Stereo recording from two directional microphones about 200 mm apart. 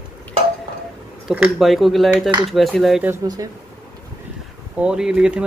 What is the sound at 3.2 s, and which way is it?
Speech, 20° right (ahead or behind).